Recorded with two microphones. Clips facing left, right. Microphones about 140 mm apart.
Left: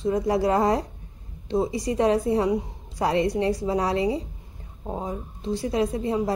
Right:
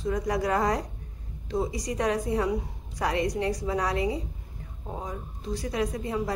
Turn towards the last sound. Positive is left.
turn(degrees=25)  # may be behind; listen again after turning